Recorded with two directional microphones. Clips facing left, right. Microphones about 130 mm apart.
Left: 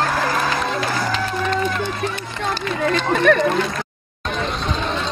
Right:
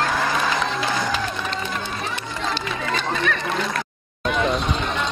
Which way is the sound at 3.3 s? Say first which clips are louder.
Left 11 dB; 55° left (ahead or behind).